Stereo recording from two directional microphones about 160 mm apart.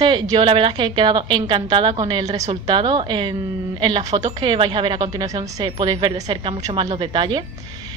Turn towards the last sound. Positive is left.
turn(degrees=-30)  # may be behind; listen again after turning